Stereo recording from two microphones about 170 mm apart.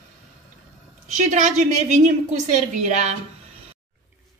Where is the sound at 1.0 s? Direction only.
45° right (ahead or behind).